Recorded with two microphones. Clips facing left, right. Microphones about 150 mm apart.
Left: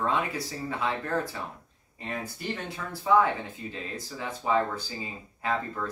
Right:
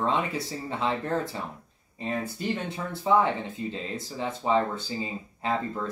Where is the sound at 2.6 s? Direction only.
25° right (ahead or behind).